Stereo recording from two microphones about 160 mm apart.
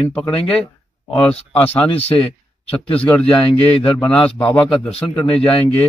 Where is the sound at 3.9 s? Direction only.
5° left (ahead or behind).